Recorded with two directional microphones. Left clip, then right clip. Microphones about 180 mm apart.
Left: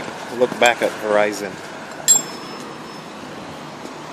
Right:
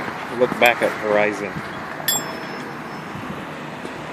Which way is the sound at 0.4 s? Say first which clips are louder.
Even; 25° left (ahead or behind).